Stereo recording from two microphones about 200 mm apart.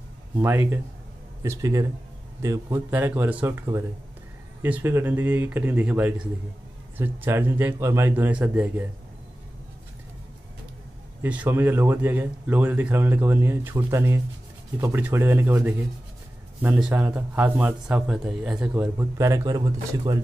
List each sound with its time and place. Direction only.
0.4 s a man's voice: 10° right (ahead or behind)
11.2 s a man's voice: 10° right (ahead or behind)